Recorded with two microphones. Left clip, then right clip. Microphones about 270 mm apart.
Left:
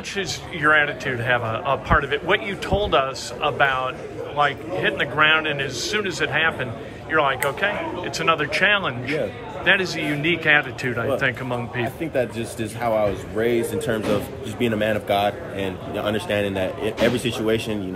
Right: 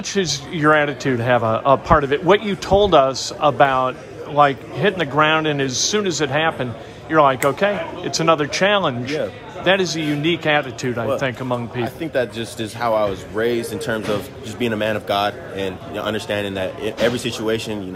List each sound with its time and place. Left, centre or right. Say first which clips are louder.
0.1 s a man's voice: right 6 dB; centre